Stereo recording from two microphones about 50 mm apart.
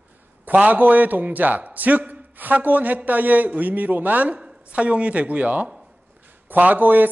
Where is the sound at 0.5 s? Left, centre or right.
Right.